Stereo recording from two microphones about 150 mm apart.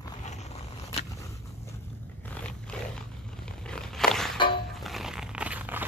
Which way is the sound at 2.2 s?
5° left (ahead or behind).